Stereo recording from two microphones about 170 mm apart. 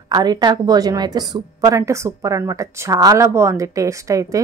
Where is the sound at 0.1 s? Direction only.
25° right (ahead or behind).